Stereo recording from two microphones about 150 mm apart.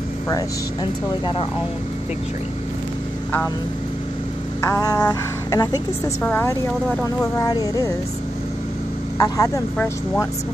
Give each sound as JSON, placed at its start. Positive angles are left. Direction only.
{"t": 4.6, "sound": "speech", "side_deg": 25}
{"t": 6.2, "sound": "a woman's voice", "side_deg": 15}
{"t": 9.2, "sound": "speech", "side_deg": 25}